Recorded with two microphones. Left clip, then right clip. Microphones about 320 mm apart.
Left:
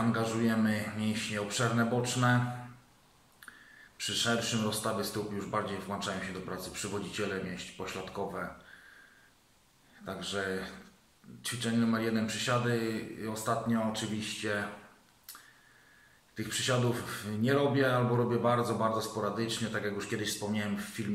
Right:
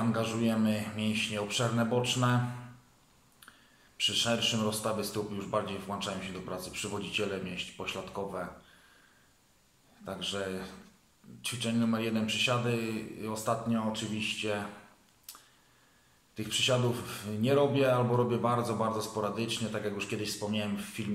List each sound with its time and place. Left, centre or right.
0.1 s speech: centre
4.0 s speech: centre
10.0 s speech: centre
16.3 s speech: centre